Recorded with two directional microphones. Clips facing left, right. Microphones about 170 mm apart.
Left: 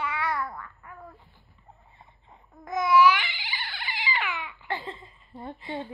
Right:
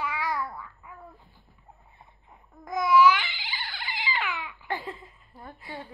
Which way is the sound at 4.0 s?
15° left (ahead or behind).